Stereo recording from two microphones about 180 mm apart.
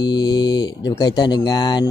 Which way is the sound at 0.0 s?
25° left (ahead or behind).